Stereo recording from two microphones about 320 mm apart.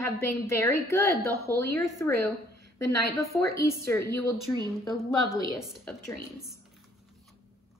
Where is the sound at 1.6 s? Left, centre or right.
Centre.